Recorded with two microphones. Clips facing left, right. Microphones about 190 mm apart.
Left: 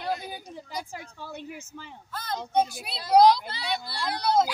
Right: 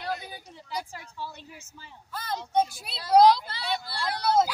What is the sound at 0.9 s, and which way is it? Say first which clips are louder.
Speech: left 1 dB; 50° left (ahead or behind).